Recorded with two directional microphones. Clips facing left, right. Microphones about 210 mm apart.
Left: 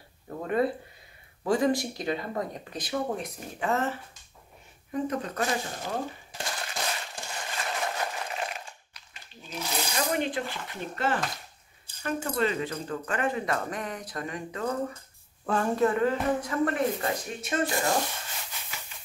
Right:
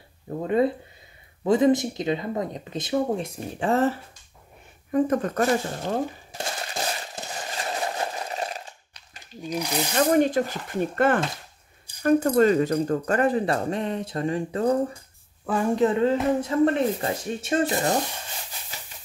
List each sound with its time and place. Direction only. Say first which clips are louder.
0.3 s speech: right 5 dB; 25° right (ahead or behind)
4.9 s speech: right 8 dB; 50° right (ahead or behind)
7.5 s a sound: right 3 dB; 35° right (ahead or behind)
9.4 s speech: right 9 dB; 15° right (ahead or behind)
10.1 s speech: right 9 dB; 40° right (ahead or behind)
15.4 s speech: right 3 dB; 10° right (ahead or behind)
15.7 s speech: right 5 dB; 20° right (ahead or behind)